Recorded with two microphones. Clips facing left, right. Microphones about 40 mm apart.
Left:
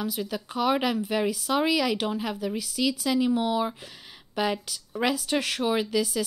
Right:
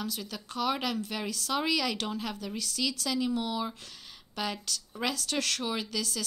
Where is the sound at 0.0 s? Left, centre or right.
Centre.